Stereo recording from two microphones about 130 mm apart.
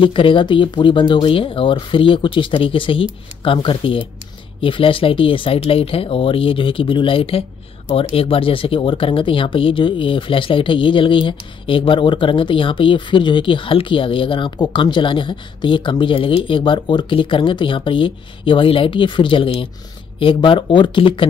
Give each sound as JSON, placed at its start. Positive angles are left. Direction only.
{"t": 0.0, "sound": "speech", "side_deg": 40}